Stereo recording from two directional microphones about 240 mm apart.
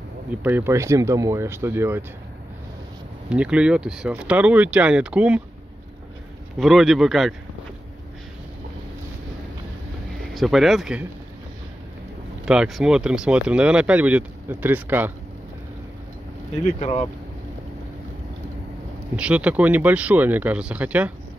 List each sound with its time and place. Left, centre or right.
0.4 s speech: centre
3.3 s speech: centre
6.6 s speech: centre
10.3 s speech: centre
12.4 s speech: centre
16.6 s speech: left
19.1 s speech: centre